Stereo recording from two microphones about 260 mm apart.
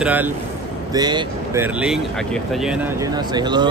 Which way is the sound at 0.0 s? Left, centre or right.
Centre.